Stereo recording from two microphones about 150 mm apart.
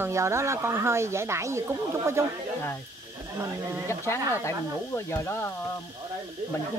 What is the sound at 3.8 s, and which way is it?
Speech, 15° left (ahead or behind).